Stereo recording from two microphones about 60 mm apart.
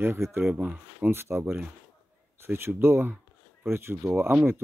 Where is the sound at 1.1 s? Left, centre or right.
Right.